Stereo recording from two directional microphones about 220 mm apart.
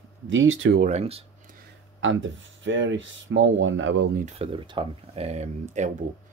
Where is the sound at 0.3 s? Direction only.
60° right (ahead or behind).